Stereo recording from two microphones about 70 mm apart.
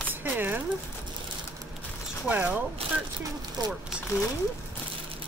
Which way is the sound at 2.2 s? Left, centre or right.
Right.